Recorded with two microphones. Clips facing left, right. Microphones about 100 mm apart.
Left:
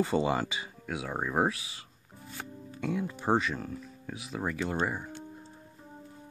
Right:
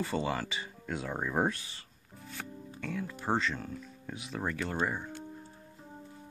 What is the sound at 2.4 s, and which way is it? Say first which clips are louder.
Music: left 1 dB; 5° left (ahead or behind).